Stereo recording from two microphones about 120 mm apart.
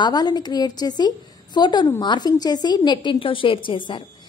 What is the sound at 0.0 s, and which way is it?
A woman's voice, 35° left (ahead or behind).